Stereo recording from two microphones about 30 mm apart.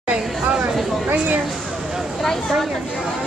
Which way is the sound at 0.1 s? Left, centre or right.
Right.